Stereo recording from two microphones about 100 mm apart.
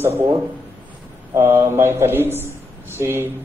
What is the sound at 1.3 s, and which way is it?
A man's voice, 25° right (ahead or behind).